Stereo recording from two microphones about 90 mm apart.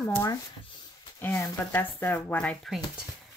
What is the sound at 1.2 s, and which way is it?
Speech, 25° left (ahead or behind).